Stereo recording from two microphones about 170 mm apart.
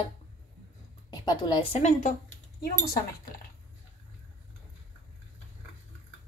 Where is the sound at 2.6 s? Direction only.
60° left (ahead or behind).